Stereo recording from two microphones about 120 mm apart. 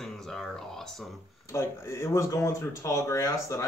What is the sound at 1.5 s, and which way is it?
Speech, 20° left (ahead or behind).